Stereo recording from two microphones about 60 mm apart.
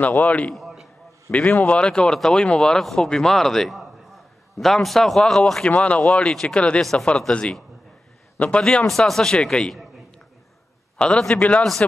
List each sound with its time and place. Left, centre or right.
0.0 s a man's voice: left
0.6 s a sound: centre
1.3 s a man's voice: left; by 5.4 s centre
5.7 s a man's voice: left
6.8 s speech: centre
8.8 s a man's voice: centre